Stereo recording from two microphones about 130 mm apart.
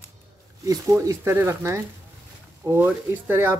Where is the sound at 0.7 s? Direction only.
25° right (ahead or behind).